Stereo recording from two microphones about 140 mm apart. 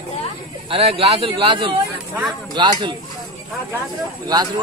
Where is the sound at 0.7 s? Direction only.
40° right (ahead or behind).